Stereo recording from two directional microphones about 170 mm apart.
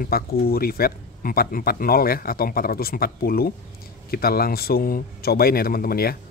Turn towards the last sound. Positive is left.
turn(degrees=60)  # may be behind; listen again after turning